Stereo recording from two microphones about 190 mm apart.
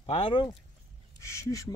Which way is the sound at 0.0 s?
30° left (ahead or behind).